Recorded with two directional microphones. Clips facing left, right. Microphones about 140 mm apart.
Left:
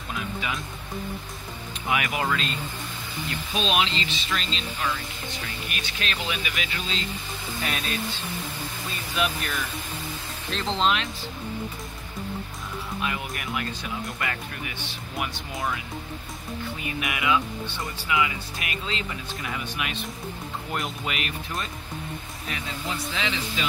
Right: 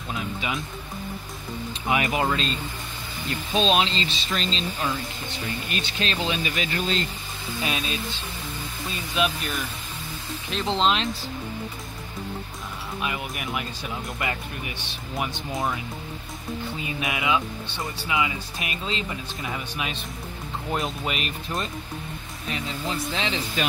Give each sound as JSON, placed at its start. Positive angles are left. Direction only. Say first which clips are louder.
{"t": 0.1, "sound": "music", "louder": "right 1 dB", "side_deg": -25}
{"t": 1.9, "sound": "speech", "louder": "right 2 dB", "side_deg": -25}
{"t": 3.5, "sound": "speech", "louder": "right 3 dB", "side_deg": -30}
{"t": 6.6, "sound": "speech", "louder": "right 6 dB", "side_deg": -45}
{"t": 7.6, "sound": "speech", "louder": "right 2 dB", "side_deg": -20}
{"t": 9.1, "sound": "speech", "louder": "right 2 dB", "side_deg": -20}
{"t": 13.0, "sound": "speech", "louder": "right 2 dB", "side_deg": -15}
{"t": 15.1, "sound": "speech", "louder": "right 3 dB", "side_deg": -25}
{"t": 16.8, "sound": "speech", "louder": "even", "side_deg": -25}
{"t": 23.1, "sound": "speech", "louder": "even", "side_deg": -30}